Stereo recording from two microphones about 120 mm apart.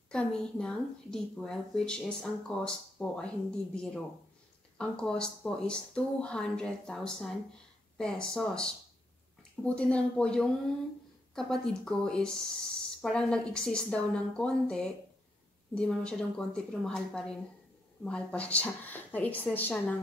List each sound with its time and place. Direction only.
0.1 s a woman's voice: 5° left (ahead or behind)